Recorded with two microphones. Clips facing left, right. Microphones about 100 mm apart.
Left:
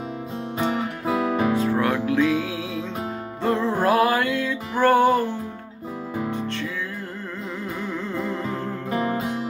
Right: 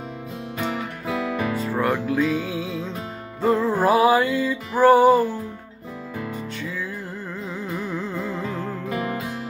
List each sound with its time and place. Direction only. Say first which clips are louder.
0.6 s music: left 3 dB; 25° left (ahead or behind)
1.6 s music: left 1 dB; centre (ahead or behind)
6.3 s music: left 3 dB; 5° right (ahead or behind)
7.9 s music: even; 5° right (ahead or behind)
8.9 s music: left 4 dB; 25° left (ahead or behind)